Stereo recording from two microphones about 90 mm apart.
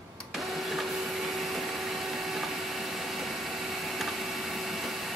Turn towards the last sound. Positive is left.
turn(degrees=0)  # may be behind; listen again after turning